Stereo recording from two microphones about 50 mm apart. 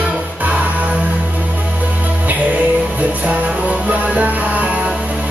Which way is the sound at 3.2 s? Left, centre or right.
Right.